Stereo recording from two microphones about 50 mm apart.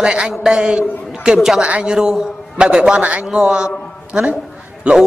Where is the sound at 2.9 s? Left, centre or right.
Right.